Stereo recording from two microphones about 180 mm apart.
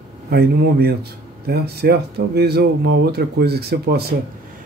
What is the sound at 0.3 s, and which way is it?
Speech, 60° right (ahead or behind).